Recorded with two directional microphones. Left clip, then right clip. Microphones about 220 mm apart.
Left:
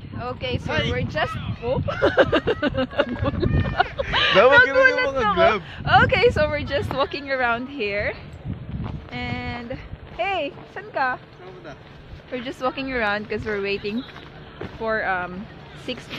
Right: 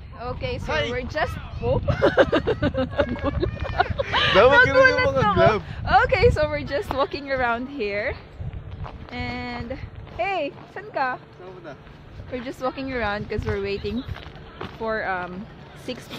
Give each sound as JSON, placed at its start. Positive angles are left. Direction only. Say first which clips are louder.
{"t": 0.2, "sound": "speech", "louder": "left 2 dB", "side_deg": 0}
{"t": 0.7, "sound": "speech", "louder": "even", "side_deg": -15}
{"t": 0.9, "sound": "speech", "louder": "left 1 dB", "side_deg": 0}
{"t": 4.8, "sound": "speech", "louder": "even", "side_deg": -55}
{"t": 5.9, "sound": "speech", "louder": "left 1 dB", "side_deg": 0}
{"t": 12.3, "sound": "speech", "louder": "left 2 dB", "side_deg": 0}
{"t": 14.8, "sound": "speech", "louder": "left 3 dB", "side_deg": -5}